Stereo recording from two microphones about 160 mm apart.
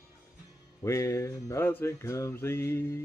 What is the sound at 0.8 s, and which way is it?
Music, 20° left (ahead or behind).